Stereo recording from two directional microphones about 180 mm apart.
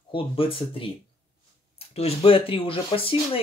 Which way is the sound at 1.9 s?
35° left (ahead or behind).